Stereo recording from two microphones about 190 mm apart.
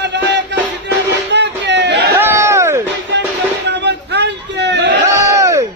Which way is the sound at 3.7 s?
65° right (ahead or behind).